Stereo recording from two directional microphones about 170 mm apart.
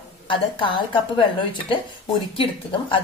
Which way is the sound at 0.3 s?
30° left (ahead or behind).